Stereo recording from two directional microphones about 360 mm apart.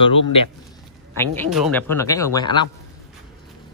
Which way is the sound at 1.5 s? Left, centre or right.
Centre.